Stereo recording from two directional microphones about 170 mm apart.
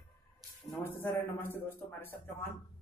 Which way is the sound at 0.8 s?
15° left (ahead or behind).